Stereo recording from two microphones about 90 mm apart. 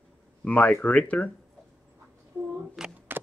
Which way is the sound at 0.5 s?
15° left (ahead or behind).